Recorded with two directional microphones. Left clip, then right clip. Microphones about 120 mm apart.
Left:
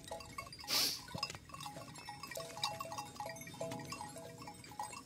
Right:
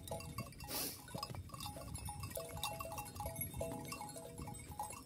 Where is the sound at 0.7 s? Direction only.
50° right (ahead or behind).